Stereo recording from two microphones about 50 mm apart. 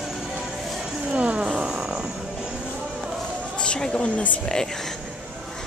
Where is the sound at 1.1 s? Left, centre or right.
Right.